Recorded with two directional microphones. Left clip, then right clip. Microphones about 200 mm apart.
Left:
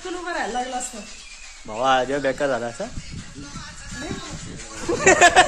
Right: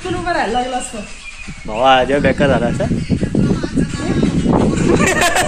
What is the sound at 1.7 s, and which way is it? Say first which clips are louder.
Speech: right 8 dB; 10° left (ahead or behind).